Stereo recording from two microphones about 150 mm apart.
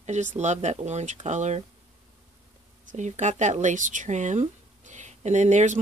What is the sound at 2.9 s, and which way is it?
Speech, 50° right (ahead or behind).